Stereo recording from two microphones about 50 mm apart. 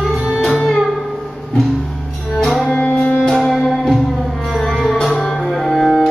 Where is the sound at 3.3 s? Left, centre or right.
Centre.